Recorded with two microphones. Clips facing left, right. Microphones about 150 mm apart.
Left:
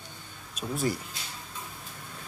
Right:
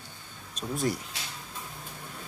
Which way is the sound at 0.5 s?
Centre (ahead or behind).